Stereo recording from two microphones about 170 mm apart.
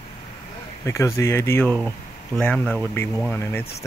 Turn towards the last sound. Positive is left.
turn(degrees=10)  # may be behind; listen again after turning